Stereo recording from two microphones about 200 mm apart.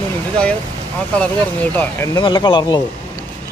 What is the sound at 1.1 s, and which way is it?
Speech, 5° left (ahead or behind).